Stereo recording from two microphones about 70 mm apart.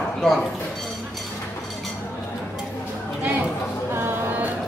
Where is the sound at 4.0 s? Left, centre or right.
Right.